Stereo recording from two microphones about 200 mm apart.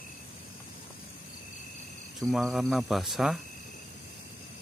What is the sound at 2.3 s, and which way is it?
Speech, centre (ahead or behind).